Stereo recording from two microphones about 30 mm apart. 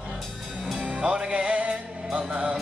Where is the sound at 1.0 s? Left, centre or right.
Right.